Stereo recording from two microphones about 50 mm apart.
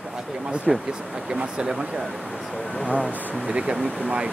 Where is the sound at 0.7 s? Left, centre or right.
Centre.